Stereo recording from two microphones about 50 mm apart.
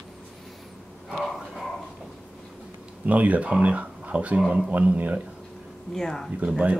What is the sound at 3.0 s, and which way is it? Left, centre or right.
Speech, right.